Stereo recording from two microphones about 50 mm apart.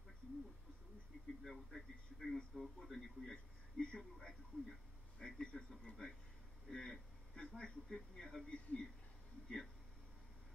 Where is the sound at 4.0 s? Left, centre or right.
Centre.